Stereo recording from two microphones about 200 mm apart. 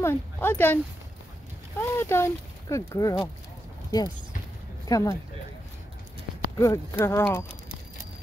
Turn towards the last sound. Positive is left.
turn(degrees=10)  # may be behind; listen again after turning